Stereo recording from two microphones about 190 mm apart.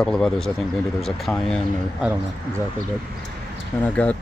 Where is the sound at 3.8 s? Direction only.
5° left (ahead or behind).